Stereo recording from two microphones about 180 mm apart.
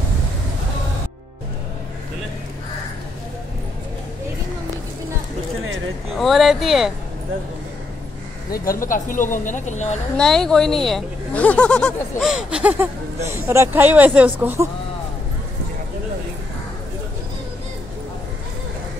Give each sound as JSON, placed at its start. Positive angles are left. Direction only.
{"t": 6.1, "sound": "speech", "side_deg": 0}
{"t": 8.8, "sound": "a woman's voice", "side_deg": 45}
{"t": 10.1, "sound": "speech", "side_deg": 5}